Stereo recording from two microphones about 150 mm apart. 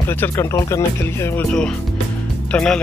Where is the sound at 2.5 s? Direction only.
5° left (ahead or behind).